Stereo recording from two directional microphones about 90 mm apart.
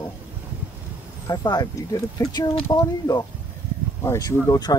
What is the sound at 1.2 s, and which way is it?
Speech, 45° left (ahead or behind).